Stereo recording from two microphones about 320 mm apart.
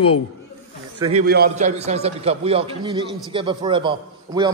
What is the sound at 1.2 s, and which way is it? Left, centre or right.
A man's voice, right.